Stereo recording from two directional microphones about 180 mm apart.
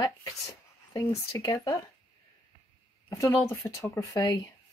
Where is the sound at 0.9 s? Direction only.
20° left (ahead or behind).